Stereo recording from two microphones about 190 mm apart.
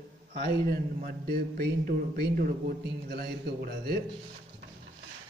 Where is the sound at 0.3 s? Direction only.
55° right (ahead or behind).